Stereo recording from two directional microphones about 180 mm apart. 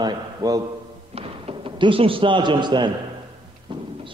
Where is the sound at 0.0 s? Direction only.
20° right (ahead or behind).